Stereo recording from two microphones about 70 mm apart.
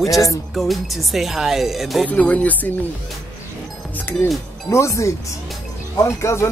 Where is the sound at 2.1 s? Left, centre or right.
Left.